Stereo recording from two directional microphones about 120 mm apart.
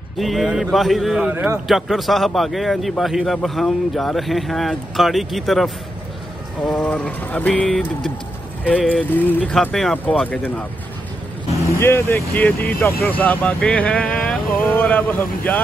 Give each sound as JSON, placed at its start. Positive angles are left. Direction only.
{"t": 0.2, "sound": "a man's voice", "side_deg": 0}
{"t": 6.6, "sound": "speech", "side_deg": 10}
{"t": 9.1, "sound": "speech", "side_deg": 15}
{"t": 9.5, "sound": "a man's voice", "side_deg": 5}
{"t": 11.7, "sound": "speech", "side_deg": 20}